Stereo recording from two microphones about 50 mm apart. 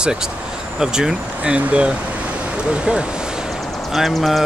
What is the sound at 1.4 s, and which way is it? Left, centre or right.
Speech, right.